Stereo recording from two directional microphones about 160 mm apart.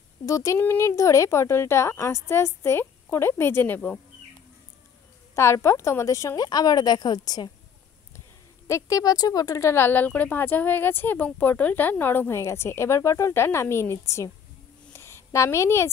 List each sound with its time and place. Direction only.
0.2 s speech: 20° left (ahead or behind)
5.3 s speech: 15° left (ahead or behind)
8.6 s speech: 20° left (ahead or behind)
14.9 s a sound: 15° left (ahead or behind)